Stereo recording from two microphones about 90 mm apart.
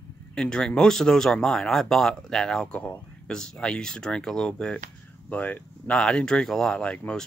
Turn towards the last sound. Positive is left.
turn(degrees=10)  # may be behind; listen again after turning